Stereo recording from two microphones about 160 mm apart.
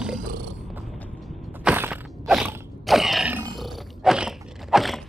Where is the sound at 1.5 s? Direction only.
10° right (ahead or behind).